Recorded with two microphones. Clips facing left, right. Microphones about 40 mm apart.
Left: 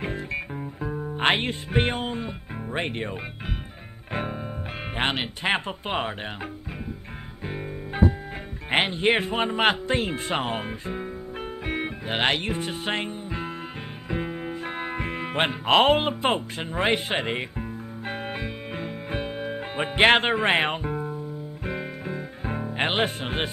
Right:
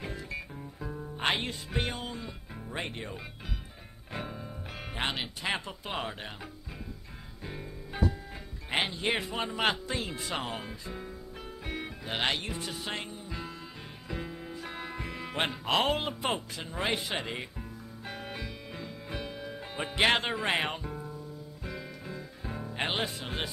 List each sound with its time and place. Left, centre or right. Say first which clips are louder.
0.0 s music: left 8 dB; left
4.9 s speech: left 7 dB; left
7.4 s music: left 9 dB; left
8.6 s speech: left 8 dB; left
14.0 s music: left 9 dB; left
22.7 s speech: left 7 dB; left